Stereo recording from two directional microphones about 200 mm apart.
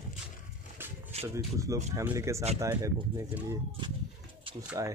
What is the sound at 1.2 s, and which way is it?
Speech, 15° right (ahead or behind).